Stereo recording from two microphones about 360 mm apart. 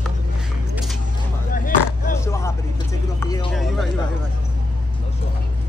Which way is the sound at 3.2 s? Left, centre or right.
Centre.